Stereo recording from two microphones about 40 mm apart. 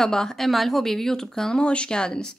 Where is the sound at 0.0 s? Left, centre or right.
Centre.